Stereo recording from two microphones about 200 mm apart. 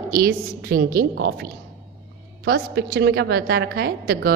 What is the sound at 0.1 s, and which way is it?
A woman's voice, 50° right (ahead or behind).